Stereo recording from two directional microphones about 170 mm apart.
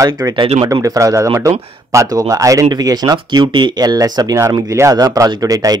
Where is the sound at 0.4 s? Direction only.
30° right (ahead or behind).